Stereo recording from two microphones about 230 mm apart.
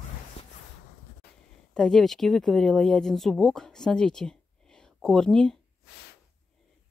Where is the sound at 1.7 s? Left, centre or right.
Centre.